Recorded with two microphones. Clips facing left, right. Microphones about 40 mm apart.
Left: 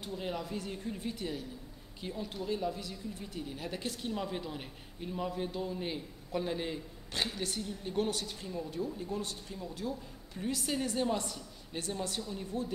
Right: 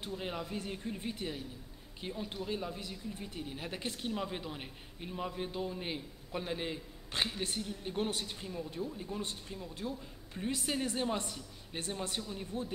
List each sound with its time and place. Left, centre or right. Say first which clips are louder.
0.1 s a man's voice: left 2 dB; centre
8.8 s speech: left 3 dB; centre
9.2 s a man's voice: left 1 dB; right